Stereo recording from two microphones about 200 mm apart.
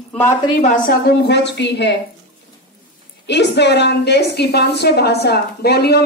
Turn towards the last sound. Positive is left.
turn(degrees=55)  # may be behind; listen again after turning